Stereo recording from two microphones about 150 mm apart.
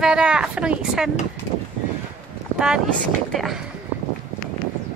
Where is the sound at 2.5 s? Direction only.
5° right (ahead or behind).